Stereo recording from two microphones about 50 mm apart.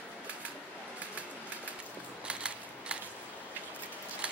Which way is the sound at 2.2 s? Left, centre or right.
Right.